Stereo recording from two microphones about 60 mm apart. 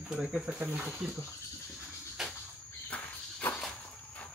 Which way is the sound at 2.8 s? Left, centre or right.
Left.